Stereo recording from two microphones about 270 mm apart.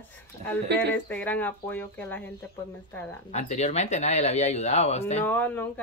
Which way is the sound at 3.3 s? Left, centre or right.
Left.